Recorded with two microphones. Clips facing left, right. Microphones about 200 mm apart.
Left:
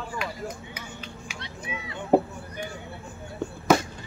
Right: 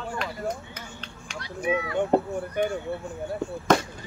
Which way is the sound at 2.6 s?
55° right (ahead or behind).